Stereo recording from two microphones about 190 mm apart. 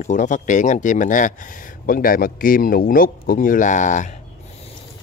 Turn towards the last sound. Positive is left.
turn(degrees=40)  # may be behind; listen again after turning